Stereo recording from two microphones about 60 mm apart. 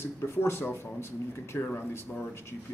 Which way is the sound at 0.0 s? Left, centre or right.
Left.